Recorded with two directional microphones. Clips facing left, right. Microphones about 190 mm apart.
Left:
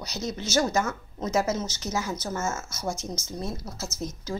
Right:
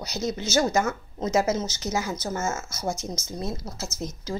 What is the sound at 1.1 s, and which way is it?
Speech, 20° right (ahead or behind).